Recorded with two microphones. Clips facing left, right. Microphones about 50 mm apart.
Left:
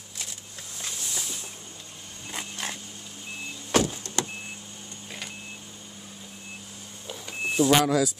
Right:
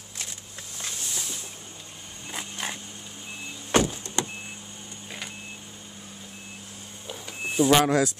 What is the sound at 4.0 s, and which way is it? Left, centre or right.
Vehicle, right.